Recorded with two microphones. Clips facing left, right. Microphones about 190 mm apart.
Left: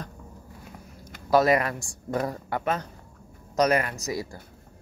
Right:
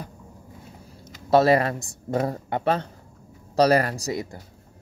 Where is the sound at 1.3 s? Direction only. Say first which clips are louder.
Right 3 dB; 30° right (ahead or behind).